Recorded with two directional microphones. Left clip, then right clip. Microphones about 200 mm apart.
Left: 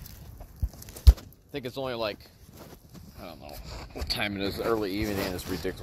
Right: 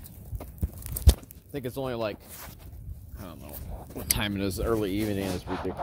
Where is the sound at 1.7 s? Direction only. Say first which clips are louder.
Even; 5° right (ahead or behind).